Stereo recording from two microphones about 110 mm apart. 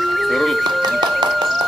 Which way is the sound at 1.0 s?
45° right (ahead or behind).